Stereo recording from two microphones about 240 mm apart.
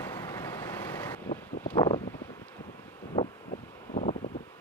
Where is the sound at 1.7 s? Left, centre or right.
Centre.